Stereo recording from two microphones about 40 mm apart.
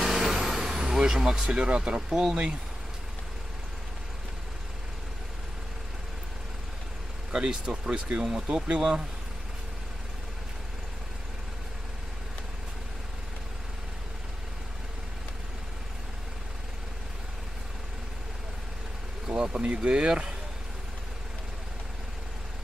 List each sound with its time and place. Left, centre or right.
0.0 s vehicle: centre
7.3 s speech: right
8.2 s speech: centre
19.2 s speech: centre
20.1 s speech: centre